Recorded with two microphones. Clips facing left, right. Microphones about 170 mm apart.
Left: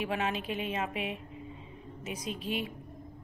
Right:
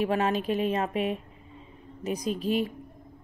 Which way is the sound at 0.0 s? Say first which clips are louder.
Right 7 dB; 40° right (ahead or behind).